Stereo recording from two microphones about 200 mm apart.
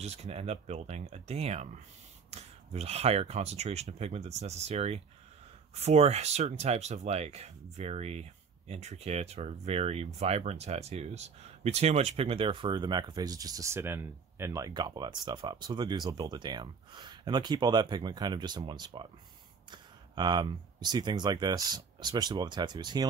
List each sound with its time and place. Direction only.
0.0 s speech: 30° right (ahead or behind)